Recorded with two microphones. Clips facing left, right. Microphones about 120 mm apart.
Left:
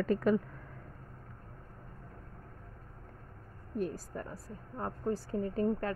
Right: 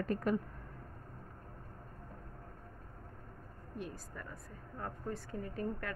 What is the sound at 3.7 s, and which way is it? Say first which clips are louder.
A woman's voice: left 9 dB; 40° left (ahead or behind).